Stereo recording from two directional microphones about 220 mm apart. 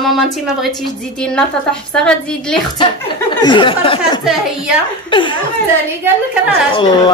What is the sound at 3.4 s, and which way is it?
Speech, 20° left (ahead or behind).